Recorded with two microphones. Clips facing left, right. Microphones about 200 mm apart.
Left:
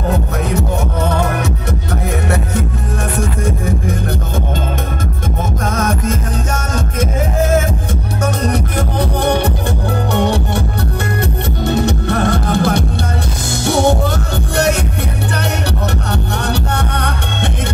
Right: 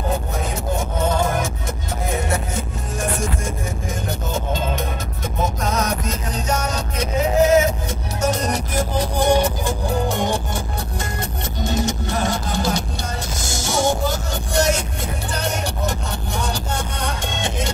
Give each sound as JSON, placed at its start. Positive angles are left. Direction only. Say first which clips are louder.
{"t": 0.1, "sound": "music", "louder": "left 6 dB", "side_deg": 65}
{"t": 5.4, "sound": "music", "louder": "left 2 dB", "side_deg": 55}
{"t": 11.6, "sound": "music", "louder": "left 6 dB", "side_deg": 60}
{"t": 16.1, "sound": "music", "louder": "left 7 dB", "side_deg": 65}